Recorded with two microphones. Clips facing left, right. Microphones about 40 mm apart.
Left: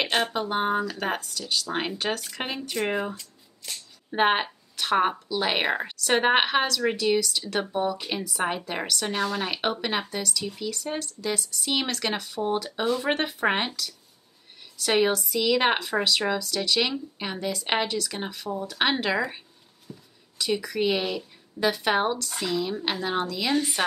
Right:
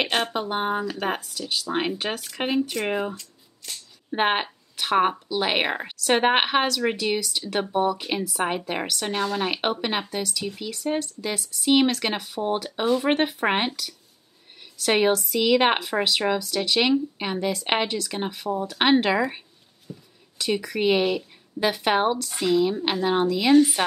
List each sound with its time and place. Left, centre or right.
0.0 s a woman's voice: centre
19.9 s a sound: centre
20.3 s speech: centre